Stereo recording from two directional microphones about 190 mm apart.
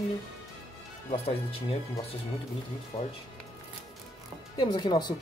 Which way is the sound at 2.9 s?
30° left (ahead or behind).